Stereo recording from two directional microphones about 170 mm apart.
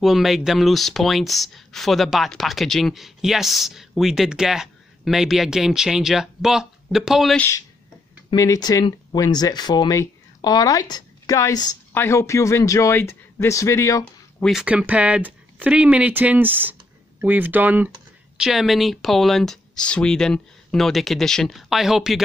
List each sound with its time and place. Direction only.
0.0 s speech: centre (ahead or behind)
7.3 s speech: 15° left (ahead or behind)
14.4 s speech: 5° right (ahead or behind)